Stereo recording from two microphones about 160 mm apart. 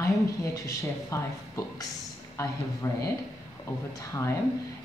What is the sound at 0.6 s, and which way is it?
Speech, 20° left (ahead or behind).